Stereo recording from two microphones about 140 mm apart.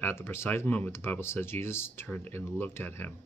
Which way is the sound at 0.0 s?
15° left (ahead or behind).